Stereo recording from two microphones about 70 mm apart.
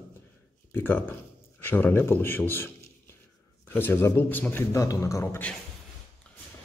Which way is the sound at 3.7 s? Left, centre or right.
Left.